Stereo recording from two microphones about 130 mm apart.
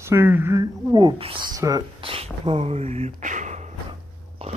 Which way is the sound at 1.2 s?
45° right (ahead or behind).